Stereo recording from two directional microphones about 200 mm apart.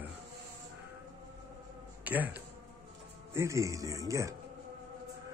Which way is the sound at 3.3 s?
15° right (ahead or behind).